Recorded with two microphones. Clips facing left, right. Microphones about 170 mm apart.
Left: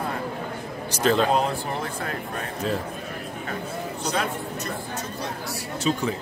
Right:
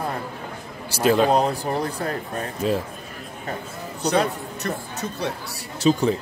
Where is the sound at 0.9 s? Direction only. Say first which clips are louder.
Right 3 dB; 10° right (ahead or behind).